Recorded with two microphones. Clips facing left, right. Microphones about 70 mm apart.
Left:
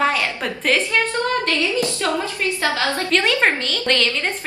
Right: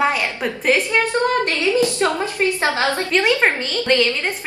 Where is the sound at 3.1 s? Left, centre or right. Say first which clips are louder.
Even; centre.